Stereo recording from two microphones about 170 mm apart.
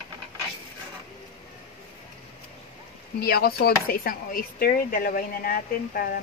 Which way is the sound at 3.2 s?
65° left (ahead or behind).